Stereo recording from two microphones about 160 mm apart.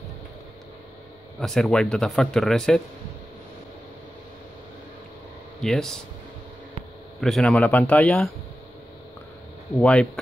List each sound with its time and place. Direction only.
1.4 s speech: 5° left (ahead or behind)
5.6 s speech: 5° left (ahead or behind)
7.2 s speech: centre (ahead or behind)
9.8 s speech: 5° left (ahead or behind)